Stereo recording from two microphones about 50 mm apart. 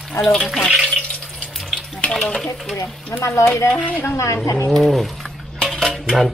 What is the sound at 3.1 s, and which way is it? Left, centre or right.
Speech, left.